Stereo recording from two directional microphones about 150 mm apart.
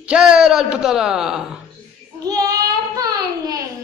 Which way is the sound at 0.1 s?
5° right (ahead or behind).